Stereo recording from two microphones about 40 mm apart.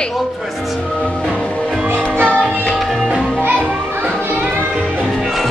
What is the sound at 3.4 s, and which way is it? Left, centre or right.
Children playing, right.